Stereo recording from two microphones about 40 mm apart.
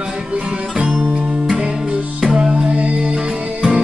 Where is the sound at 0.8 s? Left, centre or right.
Right.